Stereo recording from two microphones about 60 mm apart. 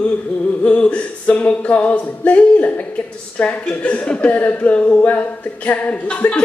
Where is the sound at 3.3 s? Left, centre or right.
Left.